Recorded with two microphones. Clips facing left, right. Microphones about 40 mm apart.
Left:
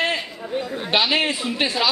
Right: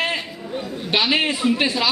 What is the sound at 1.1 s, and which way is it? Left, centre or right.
Speech, centre.